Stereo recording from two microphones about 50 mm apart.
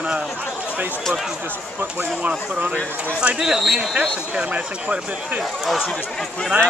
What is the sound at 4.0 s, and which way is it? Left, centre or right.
Speech, right.